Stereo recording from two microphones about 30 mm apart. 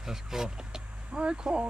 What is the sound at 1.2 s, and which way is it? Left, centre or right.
Speech, right.